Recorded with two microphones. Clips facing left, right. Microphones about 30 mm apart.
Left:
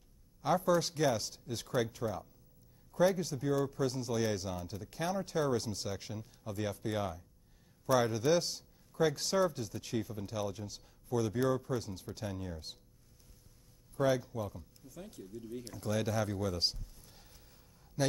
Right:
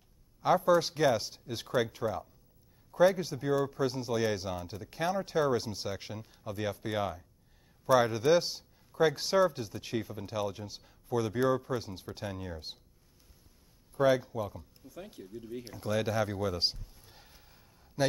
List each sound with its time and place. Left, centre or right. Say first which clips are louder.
0.6 s speech: right 3 dB; centre
13.9 s speech: right 5 dB; right